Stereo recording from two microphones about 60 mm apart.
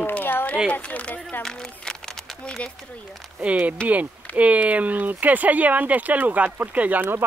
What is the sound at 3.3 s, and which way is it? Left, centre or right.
Speech, right.